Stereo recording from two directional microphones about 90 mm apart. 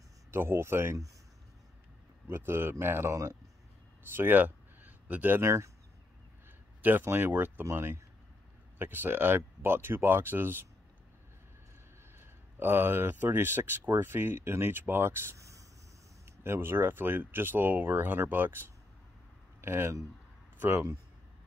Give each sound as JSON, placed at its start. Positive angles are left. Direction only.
{"t": 0.3, "sound": "speech", "side_deg": -30}
{"t": 2.2, "sound": "speech", "side_deg": -25}
{"t": 6.8, "sound": "speech", "side_deg": -20}
{"t": 12.5, "sound": "speech", "side_deg": -25}
{"t": 20.5, "sound": "speech", "side_deg": -20}